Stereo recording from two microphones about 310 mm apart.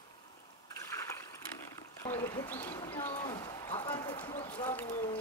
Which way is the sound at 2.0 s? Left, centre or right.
Centre.